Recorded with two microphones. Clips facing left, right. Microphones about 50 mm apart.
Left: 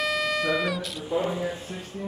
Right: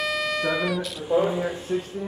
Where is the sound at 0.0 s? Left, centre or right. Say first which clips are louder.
Even; centre.